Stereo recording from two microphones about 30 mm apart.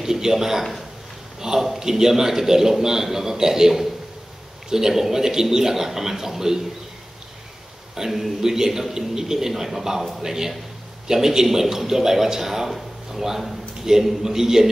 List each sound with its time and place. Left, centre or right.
0.0 s a man's voice: centre
7.9 s a man's voice: centre